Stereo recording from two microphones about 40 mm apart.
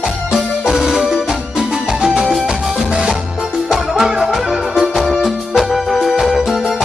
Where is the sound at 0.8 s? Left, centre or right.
Centre.